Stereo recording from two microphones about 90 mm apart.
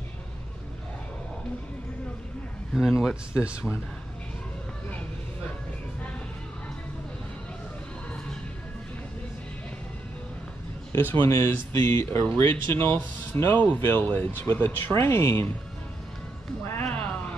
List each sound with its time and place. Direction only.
2.7 s speech: 5° right (ahead or behind)
10.9 s speech: 25° left (ahead or behind)
11.2 s speech: 35° left (ahead or behind)